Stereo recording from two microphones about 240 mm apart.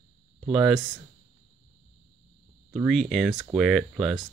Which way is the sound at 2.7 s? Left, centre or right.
Centre.